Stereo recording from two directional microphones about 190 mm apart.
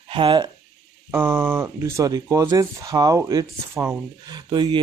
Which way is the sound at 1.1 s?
10° right (ahead or behind).